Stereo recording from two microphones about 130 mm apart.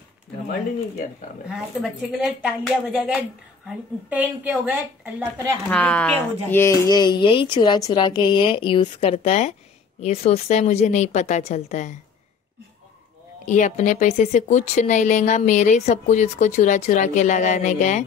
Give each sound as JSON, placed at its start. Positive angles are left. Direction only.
{"t": 1.5, "sound": "a woman's voice", "side_deg": -5}
{"t": 5.7, "sound": "a woman's voice", "side_deg": 10}
{"t": 9.1, "sound": "a woman's voice", "side_deg": 55}
{"t": 13.5, "sound": "speech", "side_deg": 70}